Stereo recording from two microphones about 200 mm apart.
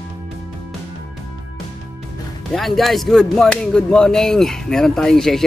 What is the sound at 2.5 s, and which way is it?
Speech, centre (ahead or behind).